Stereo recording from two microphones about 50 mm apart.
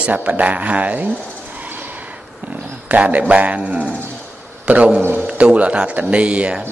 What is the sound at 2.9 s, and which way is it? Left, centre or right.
A man's voice, right.